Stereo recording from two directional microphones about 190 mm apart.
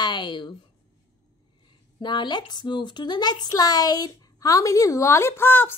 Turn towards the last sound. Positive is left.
turn(degrees=10)  # may be behind; listen again after turning